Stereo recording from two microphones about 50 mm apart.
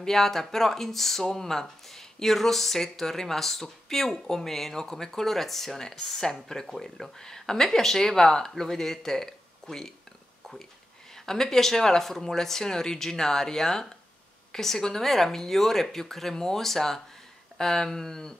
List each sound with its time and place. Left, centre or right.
0.0 s speech: centre
11.1 s speech: centre